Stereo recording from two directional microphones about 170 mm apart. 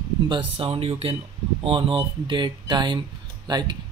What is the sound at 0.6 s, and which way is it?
Speech, 35° right (ahead or behind).